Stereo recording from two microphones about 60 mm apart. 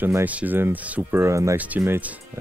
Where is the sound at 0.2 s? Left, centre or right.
Right.